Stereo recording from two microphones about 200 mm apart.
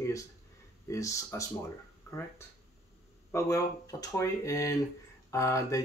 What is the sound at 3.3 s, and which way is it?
Speech, 15° left (ahead or behind).